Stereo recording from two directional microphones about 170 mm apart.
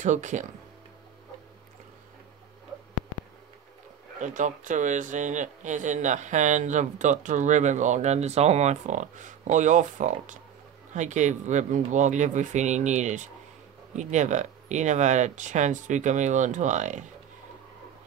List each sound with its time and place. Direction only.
0.0 s speech: 45° right (ahead or behind)
4.2 s speech: 45° right (ahead or behind)